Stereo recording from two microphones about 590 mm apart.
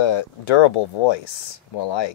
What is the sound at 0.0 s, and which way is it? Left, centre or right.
Speech, left.